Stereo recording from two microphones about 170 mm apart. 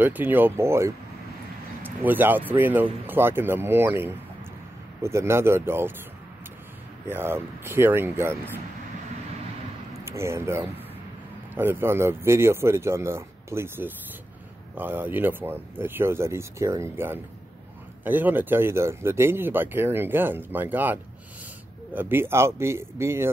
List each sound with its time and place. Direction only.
0.0 s speech: 10° right (ahead or behind)
7.1 s speech: 15° right (ahead or behind)
10.0 s speech: 15° right (ahead or behind)